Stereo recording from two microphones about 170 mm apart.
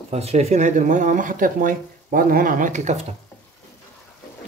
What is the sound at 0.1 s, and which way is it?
Speech, 40° right (ahead or behind).